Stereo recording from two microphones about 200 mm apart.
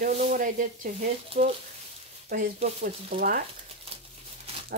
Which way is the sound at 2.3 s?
45° right (ahead or behind).